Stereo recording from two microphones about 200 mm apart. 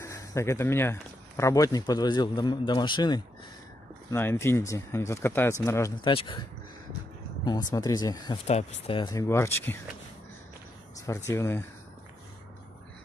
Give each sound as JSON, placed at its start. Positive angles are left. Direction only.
{"t": 0.0, "sound": "speech", "side_deg": 15}
{"t": 4.1, "sound": "speech", "side_deg": 10}
{"t": 7.4, "sound": "speech", "side_deg": 20}
{"t": 8.5, "sound": "speech", "side_deg": 35}
{"t": 11.1, "sound": "speech", "side_deg": 15}